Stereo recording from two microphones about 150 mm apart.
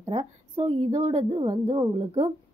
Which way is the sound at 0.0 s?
45° right (ahead or behind).